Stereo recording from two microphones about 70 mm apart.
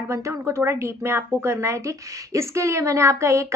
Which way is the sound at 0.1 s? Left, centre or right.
Right.